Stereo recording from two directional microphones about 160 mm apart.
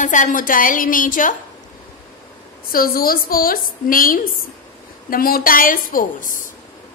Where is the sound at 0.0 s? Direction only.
50° left (ahead or behind).